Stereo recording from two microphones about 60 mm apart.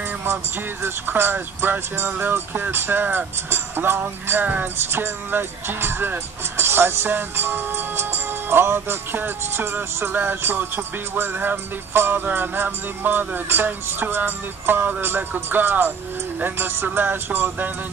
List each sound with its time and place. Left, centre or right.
0.8 s speech: right
12.6 s music: right
13.5 s speech: right